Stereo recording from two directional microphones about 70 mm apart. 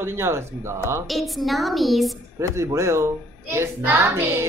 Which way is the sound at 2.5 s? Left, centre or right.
Right.